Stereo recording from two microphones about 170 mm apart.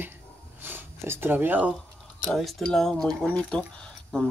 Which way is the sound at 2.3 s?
Centre (ahead or behind).